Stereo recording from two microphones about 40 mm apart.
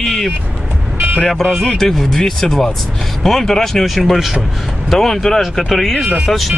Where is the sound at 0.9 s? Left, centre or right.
Right.